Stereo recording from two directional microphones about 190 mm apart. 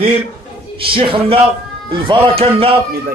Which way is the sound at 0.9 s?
30° right (ahead or behind).